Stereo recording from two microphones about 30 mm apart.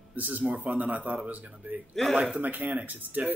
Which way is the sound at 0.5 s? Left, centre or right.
Right.